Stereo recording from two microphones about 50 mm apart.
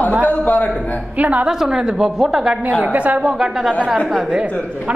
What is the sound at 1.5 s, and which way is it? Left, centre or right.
A woman's voice, centre.